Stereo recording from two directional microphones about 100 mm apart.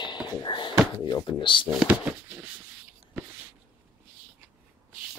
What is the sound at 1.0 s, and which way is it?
Speech, 50° left (ahead or behind).